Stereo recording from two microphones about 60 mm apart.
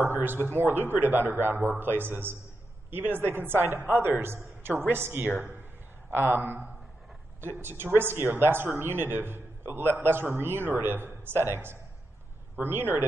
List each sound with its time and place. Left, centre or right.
0.1 s a man's voice: right